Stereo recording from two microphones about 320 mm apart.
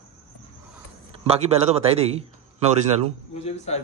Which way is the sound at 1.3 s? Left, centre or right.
Centre.